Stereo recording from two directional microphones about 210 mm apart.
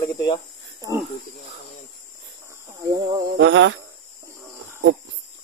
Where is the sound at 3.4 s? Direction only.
60° right (ahead or behind).